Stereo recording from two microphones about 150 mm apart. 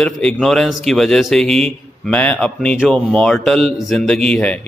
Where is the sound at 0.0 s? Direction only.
5° left (ahead or behind).